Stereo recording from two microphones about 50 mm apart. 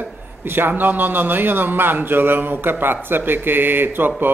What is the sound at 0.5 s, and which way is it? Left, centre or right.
A man's voice, right.